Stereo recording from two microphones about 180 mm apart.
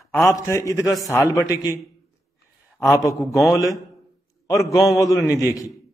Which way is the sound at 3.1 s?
20° left (ahead or behind).